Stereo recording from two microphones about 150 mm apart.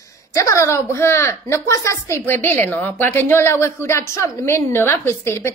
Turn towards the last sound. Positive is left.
turn(degrees=15)  # may be behind; listen again after turning